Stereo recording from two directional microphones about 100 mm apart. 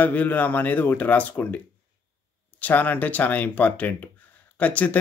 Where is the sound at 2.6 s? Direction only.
20° left (ahead or behind).